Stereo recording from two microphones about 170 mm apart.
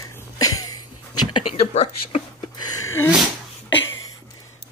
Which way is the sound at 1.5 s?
40° left (ahead or behind).